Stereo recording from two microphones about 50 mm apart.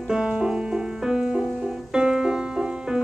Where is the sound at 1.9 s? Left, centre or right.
Centre.